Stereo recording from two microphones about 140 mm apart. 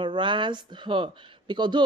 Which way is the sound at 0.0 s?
35° right (ahead or behind).